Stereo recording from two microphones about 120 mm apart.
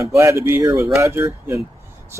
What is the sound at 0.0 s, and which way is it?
Speech, 25° right (ahead or behind).